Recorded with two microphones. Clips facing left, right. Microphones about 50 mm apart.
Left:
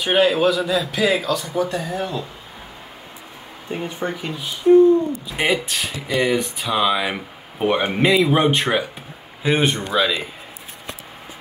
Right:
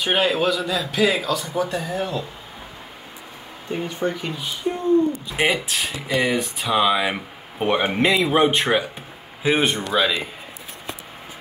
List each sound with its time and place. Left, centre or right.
0.0 s speech: centre
3.8 s speech: centre
4.2 s speech: centre